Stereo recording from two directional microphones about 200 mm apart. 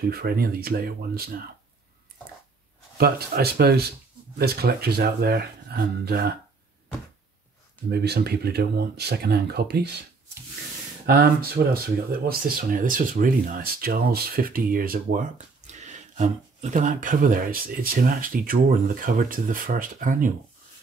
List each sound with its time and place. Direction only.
0.0 s speech: 50° right (ahead or behind)
3.0 s speech: 50° right (ahead or behind)
7.9 s speech: 55° right (ahead or behind)
11.1 s speech: 50° right (ahead or behind)